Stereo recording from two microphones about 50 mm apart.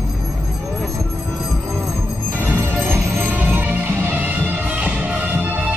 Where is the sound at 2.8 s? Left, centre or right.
Right.